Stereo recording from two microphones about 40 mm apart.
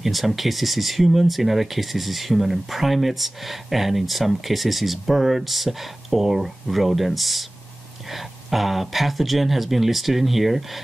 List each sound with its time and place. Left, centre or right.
0.0 s speech: centre